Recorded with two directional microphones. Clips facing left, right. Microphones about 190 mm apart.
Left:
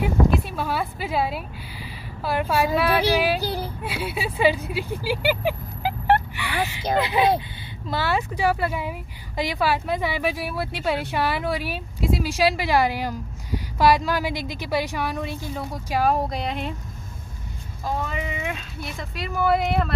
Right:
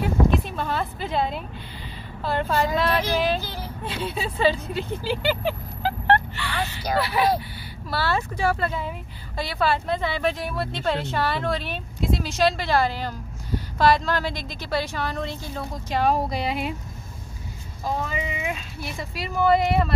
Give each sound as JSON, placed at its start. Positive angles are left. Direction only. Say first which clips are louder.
{"t": 0.0, "sound": "a sound", "louder": "left 1 dB", "side_deg": 10}
{"t": 2.2, "sound": "speech", "louder": "left 1 dB", "side_deg": 10}
{"t": 17.8, "sound": "speech", "louder": "even", "side_deg": 0}